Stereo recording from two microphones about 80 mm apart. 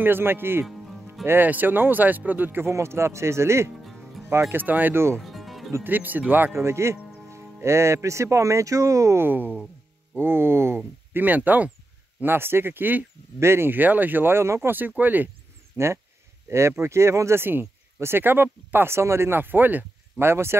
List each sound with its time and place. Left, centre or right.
0.0 s speech: right
3.8 s music: centre
4.3 s speech: right
5.2 s music: centre
5.9 s speech: right
15.7 s speech: right